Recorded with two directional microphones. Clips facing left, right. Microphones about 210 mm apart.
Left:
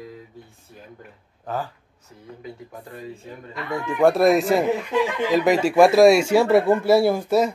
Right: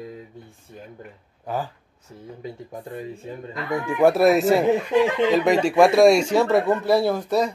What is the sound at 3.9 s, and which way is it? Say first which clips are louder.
Speech: even; 5° right (ahead or behind).